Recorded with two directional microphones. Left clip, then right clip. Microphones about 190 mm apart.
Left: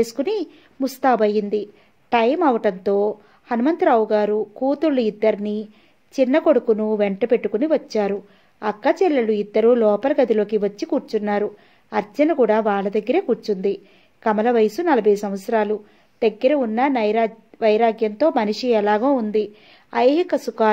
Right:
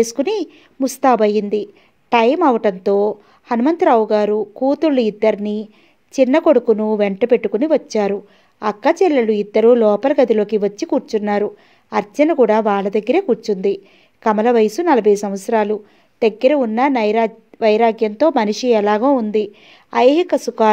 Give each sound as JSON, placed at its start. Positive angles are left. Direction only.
{"t": 0.0, "sound": "a woman's voice", "side_deg": -30}